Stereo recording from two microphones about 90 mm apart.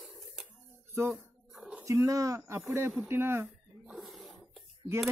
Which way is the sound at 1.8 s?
35° right (ahead or behind).